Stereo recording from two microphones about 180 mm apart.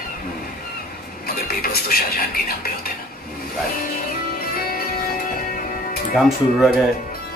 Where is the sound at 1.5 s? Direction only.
55° left (ahead or behind).